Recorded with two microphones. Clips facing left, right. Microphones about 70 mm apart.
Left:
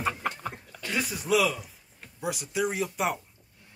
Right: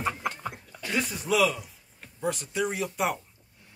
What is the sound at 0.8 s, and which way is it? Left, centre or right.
A man's voice, centre.